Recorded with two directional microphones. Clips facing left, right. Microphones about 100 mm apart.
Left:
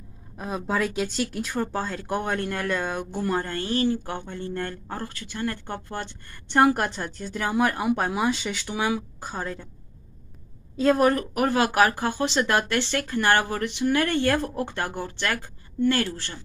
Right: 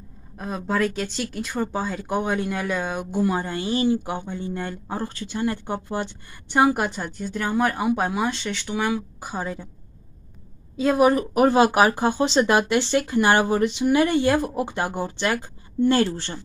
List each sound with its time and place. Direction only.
0.4 s speech: centre (ahead or behind)
5.0 s speech: 25° right (ahead or behind); by 9.7 s 10° right (ahead or behind)
10.8 s speech: 5° right (ahead or behind); by 16.3 s 25° right (ahead or behind)